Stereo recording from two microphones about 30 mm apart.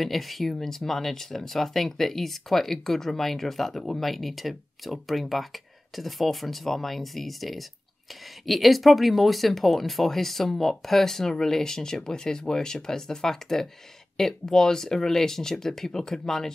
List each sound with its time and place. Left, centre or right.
0.0 s speech: centre